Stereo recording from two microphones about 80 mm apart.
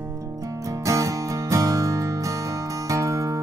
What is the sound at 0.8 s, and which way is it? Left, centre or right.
Music, right.